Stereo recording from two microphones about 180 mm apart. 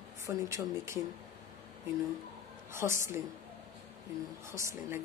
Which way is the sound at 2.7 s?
15° right (ahead or behind).